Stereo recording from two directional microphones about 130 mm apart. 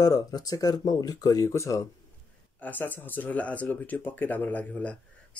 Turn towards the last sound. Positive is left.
turn(degrees=10)  # may be behind; listen again after turning